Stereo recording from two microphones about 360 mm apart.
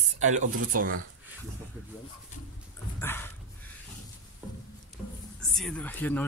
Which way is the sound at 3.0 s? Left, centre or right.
Centre.